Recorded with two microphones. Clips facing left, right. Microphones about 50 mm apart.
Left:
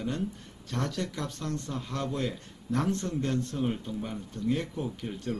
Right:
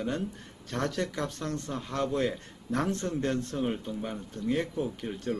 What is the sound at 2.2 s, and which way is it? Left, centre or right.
Speech, right.